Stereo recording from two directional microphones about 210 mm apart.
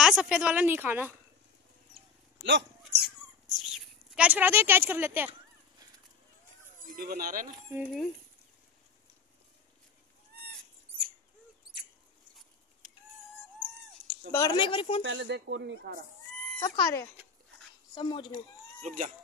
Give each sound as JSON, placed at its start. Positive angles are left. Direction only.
{"t": 0.0, "sound": "a woman's voice", "side_deg": -5}
{"t": 2.4, "sound": "speech", "side_deg": -55}
{"t": 3.5, "sound": "speech", "side_deg": 0}
{"t": 6.9, "sound": "speech", "side_deg": -45}
{"t": 7.7, "sound": "speech", "side_deg": 0}
{"t": 14.3, "sound": "speech", "side_deg": 20}
{"t": 15.0, "sound": "speech", "side_deg": -60}
{"t": 16.6, "sound": "speech", "side_deg": 15}
{"t": 18.9, "sound": "speech", "side_deg": -35}